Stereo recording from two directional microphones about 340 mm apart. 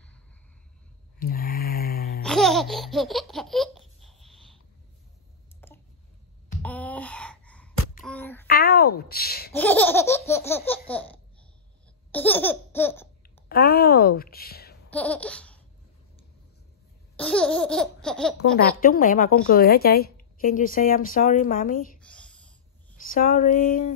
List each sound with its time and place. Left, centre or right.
1.2 s a sound: left
2.2 s laughter: centre
5.6 s a sound: centre
8.5 s a woman's voice: left
9.5 s laughter: centre
13.5 s a woman's voice: left
14.9 s laughter: centre
17.2 s laughter: centre
18.6 s a woman's voice: left
22.0 s a sound: centre
23.0 s a woman's voice: left